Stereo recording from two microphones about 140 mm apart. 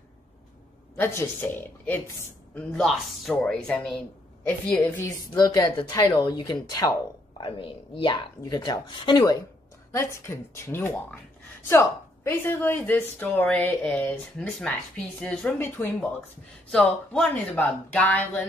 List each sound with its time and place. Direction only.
0.9 s a woman's voice: 15° left (ahead or behind)
2.5 s a woman's voice: 5° left (ahead or behind)
5.3 s speech: 30° left (ahead or behind)
7.4 s speech: 35° left (ahead or behind)
9.9 s a woman's voice: 20° left (ahead or behind)